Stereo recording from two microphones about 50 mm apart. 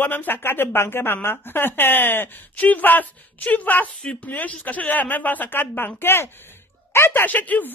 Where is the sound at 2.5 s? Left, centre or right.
Left.